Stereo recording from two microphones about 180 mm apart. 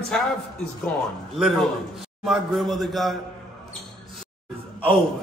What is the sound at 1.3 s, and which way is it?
A man's voice, centre (ahead or behind).